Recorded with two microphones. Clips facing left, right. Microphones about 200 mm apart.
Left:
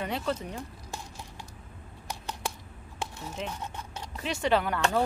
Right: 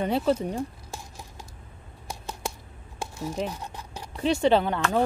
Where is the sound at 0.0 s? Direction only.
35° right (ahead or behind).